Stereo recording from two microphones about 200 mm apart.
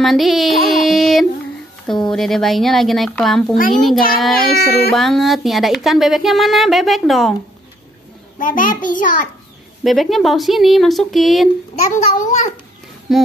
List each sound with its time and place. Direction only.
0.0 s speech: centre (ahead or behind)
8.4 s a child's voice: 40° left (ahead or behind)
9.8 s speech: centre (ahead or behind)
11.9 s a child's voice: 40° left (ahead or behind)
13.1 s speech: centre (ahead or behind)